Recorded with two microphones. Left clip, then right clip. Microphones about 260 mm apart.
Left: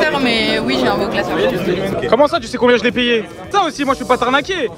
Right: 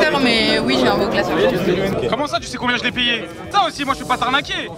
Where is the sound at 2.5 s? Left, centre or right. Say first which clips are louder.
Left 9 dB; centre.